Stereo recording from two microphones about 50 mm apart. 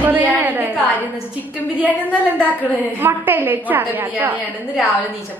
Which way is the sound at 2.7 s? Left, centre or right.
Left.